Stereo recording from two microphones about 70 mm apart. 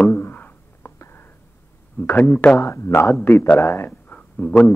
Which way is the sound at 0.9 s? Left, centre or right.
Left.